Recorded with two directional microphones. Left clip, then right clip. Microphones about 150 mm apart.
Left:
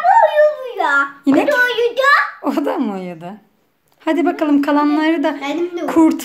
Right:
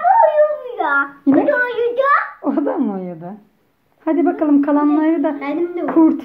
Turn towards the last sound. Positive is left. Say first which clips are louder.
# even
turn(degrees=10)  # may be behind; listen again after turning